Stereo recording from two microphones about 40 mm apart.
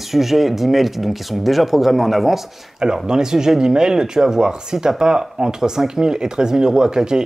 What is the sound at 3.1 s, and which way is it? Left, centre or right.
Speech, centre.